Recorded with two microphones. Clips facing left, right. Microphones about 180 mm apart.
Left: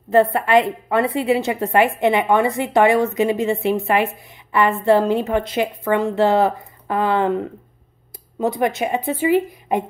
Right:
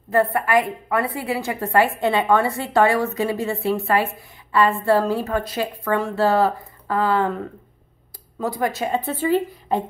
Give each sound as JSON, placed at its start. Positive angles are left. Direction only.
{"t": 0.1, "sound": "a woman's voice", "side_deg": 25}
{"t": 8.4, "sound": "a woman's voice", "side_deg": 20}